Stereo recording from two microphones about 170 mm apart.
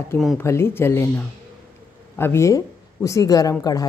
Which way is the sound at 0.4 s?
15° left (ahead or behind).